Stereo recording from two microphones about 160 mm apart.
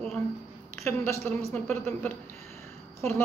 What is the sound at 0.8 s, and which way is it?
Speech, 15° left (ahead or behind).